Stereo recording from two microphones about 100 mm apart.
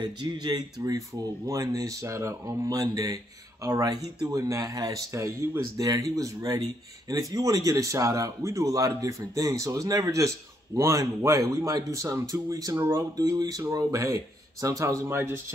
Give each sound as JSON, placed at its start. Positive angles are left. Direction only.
{"t": 0.0, "sound": "speech", "side_deg": -45}